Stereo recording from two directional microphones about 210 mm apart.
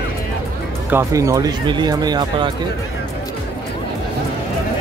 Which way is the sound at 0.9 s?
15° right (ahead or behind).